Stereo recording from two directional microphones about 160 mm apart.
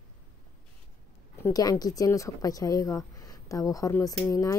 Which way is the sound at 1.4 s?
20° left (ahead or behind).